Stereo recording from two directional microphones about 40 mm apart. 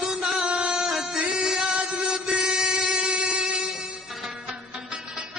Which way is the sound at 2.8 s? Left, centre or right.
Centre.